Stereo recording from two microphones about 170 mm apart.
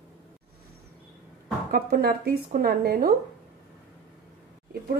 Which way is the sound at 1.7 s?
60° right (ahead or behind).